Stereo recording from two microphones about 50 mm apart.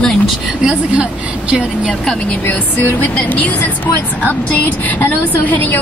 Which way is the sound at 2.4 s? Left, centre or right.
Left.